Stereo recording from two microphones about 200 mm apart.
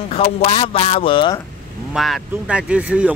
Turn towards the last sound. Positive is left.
turn(degrees=-5)  # may be behind; listen again after turning